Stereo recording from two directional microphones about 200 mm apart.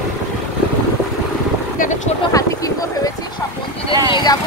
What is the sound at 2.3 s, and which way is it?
Speech, 15° left (ahead or behind).